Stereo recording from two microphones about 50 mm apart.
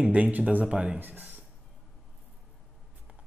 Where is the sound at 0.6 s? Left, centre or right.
Centre.